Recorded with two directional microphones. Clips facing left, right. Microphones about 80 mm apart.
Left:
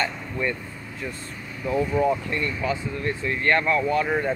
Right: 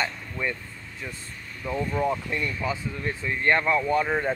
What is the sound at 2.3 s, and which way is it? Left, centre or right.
Speech, centre.